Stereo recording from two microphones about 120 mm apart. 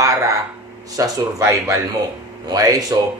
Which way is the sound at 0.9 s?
30° right (ahead or behind).